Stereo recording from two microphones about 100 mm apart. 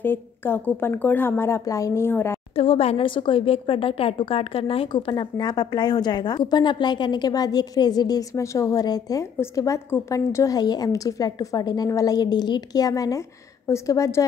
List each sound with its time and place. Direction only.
0.0 s speech: 20° left (ahead or behind)
2.5 s a woman's voice: 70° left (ahead or behind); by 9.2 s 40° left (ahead or behind)
9.4 s a woman's voice: 30° left (ahead or behind)